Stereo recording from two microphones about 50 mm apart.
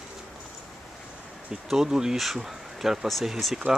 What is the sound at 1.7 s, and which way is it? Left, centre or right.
Speech, centre.